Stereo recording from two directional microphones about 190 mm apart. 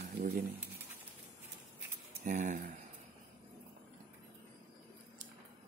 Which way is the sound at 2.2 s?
40° right (ahead or behind).